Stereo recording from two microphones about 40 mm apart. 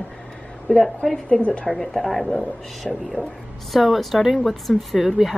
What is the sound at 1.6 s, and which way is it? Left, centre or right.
Speech, centre.